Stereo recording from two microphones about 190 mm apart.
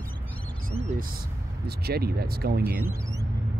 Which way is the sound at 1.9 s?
55° right (ahead or behind).